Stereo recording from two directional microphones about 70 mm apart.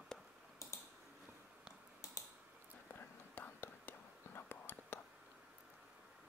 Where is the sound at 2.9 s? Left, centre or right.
Left.